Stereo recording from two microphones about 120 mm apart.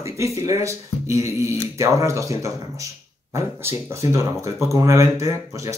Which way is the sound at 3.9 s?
25° right (ahead or behind).